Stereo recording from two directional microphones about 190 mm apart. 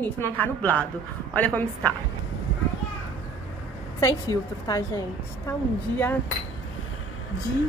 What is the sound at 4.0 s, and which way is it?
Speech, 15° left (ahead or behind).